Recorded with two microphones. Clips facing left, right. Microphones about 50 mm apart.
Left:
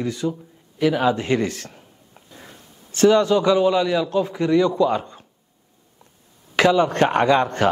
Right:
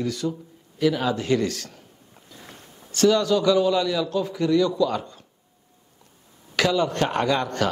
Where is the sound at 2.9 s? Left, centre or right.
Left.